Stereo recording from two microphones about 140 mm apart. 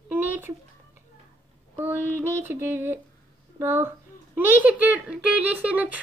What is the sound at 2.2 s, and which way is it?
Speech, 15° right (ahead or behind).